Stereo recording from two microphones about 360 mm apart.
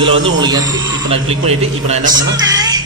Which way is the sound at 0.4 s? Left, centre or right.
Centre.